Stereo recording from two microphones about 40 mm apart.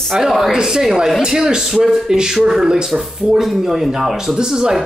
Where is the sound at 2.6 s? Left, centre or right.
Centre.